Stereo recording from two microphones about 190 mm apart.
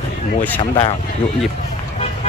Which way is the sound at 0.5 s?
30° left (ahead or behind).